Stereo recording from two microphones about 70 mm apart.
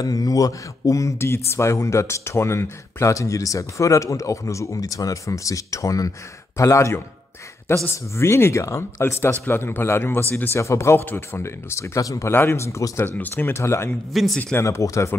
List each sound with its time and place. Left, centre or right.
0.0 s speech: left
12.3 s speech: left
12.9 s speech: left
13.6 s speech: left
14.1 s a man's voice: centre
14.6 s speech: left